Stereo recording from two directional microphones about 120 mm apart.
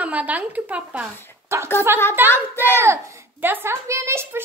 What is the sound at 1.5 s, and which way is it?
A child's voice, 25° right (ahead or behind).